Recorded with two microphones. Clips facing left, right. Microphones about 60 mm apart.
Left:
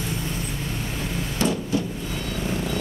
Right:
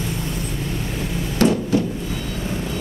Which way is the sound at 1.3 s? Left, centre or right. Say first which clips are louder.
Right 7 dB; right.